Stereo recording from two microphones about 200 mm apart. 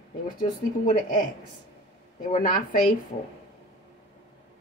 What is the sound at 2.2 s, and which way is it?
Speech, 40° left (ahead or behind).